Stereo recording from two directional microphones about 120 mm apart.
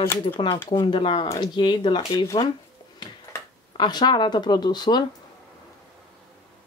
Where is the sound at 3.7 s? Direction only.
35° left (ahead or behind).